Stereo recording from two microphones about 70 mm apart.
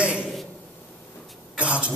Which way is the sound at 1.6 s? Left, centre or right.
Centre.